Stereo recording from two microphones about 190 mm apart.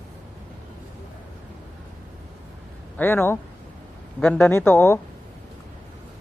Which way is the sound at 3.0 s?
10° left (ahead or behind).